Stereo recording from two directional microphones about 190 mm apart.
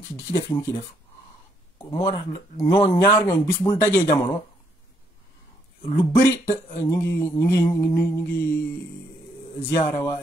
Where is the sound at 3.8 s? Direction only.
15° left (ahead or behind).